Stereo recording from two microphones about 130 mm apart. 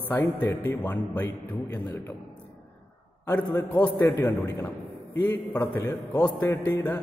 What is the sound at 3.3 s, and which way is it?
A man's voice, 15° left (ahead or behind).